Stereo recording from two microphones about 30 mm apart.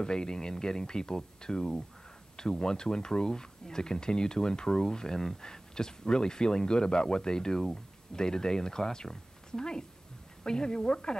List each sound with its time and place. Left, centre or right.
0.0 s speech: left